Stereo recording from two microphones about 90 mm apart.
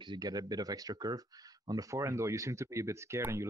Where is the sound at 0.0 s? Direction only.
50° right (ahead or behind).